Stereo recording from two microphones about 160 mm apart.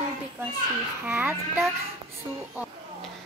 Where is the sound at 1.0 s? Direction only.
10° right (ahead or behind).